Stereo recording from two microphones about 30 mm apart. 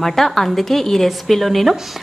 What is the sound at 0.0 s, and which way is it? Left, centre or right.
A woman's voice, centre.